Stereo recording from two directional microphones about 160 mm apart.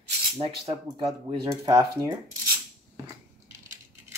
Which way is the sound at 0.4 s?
35° right (ahead or behind).